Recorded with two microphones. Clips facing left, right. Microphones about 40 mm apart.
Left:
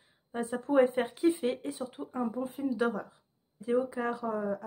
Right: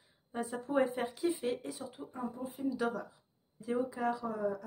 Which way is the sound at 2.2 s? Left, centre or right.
Left.